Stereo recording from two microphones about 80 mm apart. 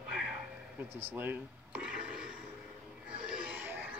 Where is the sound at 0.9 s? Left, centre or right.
Right.